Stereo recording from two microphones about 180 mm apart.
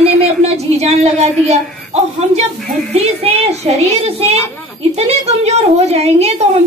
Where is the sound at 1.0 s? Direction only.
35° right (ahead or behind).